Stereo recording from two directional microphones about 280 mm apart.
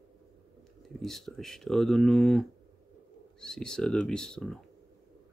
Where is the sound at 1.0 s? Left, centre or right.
Centre.